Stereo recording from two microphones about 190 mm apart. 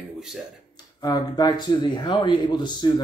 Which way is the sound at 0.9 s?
20° left (ahead or behind).